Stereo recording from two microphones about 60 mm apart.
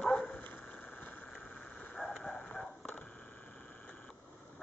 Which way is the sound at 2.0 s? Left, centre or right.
Centre.